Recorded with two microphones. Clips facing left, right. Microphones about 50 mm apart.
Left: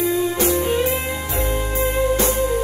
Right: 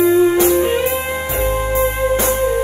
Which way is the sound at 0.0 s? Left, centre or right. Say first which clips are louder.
Right 8 dB; right.